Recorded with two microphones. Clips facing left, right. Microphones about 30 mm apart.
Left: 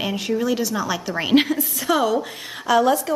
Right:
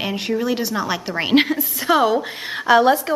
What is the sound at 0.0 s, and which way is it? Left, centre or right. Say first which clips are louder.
A woman's voice: right 1 dB; right.